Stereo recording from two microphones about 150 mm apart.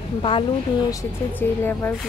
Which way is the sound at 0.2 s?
35° left (ahead or behind).